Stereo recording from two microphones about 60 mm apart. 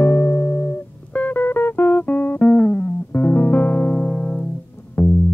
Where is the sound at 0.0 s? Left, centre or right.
Left.